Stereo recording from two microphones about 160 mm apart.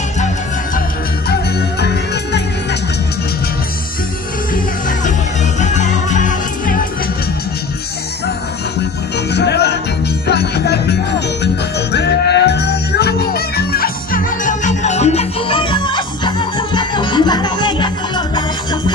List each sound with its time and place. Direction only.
5.6 s music: 50° left (ahead or behind)
9.3 s music: 90° left; by 18.8 s 30° left (ahead or behind)